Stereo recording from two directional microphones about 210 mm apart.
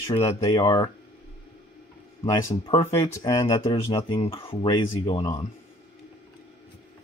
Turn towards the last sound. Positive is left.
turn(degrees=20)  # may be behind; listen again after turning